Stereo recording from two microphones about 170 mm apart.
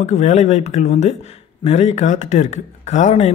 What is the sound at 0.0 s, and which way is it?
A man's voice, 40° left (ahead or behind).